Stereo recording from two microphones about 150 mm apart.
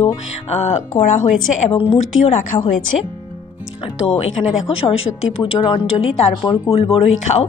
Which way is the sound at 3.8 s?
40° left (ahead or behind).